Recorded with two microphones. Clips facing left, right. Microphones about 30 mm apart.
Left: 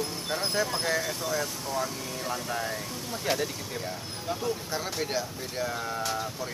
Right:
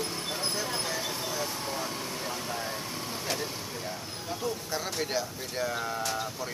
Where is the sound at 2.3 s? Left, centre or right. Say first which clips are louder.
Left 3 dB; centre.